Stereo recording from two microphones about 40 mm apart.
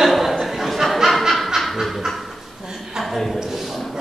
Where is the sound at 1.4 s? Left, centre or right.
Centre.